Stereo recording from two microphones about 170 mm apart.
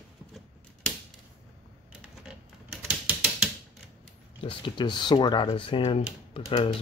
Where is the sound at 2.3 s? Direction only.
5° right (ahead or behind).